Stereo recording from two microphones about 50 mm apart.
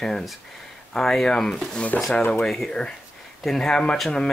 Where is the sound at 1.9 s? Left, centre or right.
Left.